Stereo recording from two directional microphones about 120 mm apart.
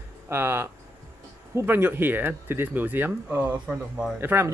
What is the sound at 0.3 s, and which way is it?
Speech, 20° right (ahead or behind).